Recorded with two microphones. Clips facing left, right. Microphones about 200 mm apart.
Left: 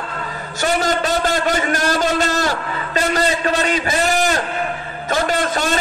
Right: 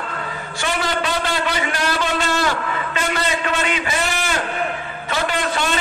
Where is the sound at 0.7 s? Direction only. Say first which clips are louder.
Left 4 dB; 40° left (ahead or behind).